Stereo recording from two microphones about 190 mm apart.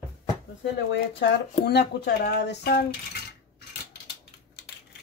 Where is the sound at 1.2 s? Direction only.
60° left (ahead or behind).